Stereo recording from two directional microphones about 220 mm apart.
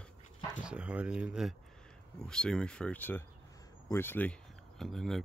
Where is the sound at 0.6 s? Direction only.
5° right (ahead or behind).